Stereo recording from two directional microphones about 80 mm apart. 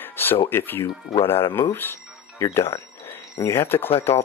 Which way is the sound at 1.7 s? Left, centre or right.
Left.